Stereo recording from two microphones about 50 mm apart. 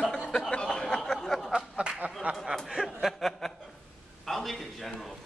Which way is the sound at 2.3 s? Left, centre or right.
Right.